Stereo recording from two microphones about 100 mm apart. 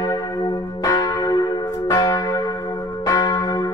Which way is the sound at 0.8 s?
35° left (ahead or behind).